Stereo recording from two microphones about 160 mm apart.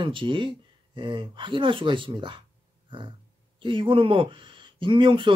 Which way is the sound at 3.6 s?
30° right (ahead or behind).